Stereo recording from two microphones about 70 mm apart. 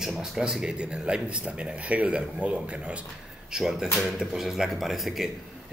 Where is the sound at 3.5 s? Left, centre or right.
Centre.